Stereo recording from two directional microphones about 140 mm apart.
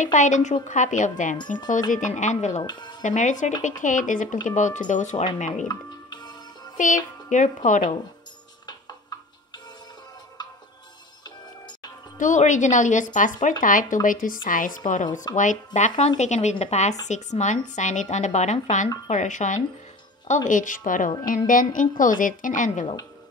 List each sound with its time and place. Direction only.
0.0 s speech: 60° left (ahead or behind)
2.6 s speech: 30° left (ahead or behind)
3.0 s speech: 65° left (ahead or behind)
5.7 s music: 30° left (ahead or behind)
6.8 s speech: 65° left (ahead or behind)
8.6 s music: 30° left (ahead or behind)
11.2 s music: 30° left (ahead or behind)
12.2 s a woman's voice: 60° left (ahead or behind)
15.3 s a woman's voice: 60° left (ahead or behind)